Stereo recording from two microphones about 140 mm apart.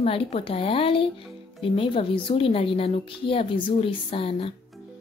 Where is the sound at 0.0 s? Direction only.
45° left (ahead or behind).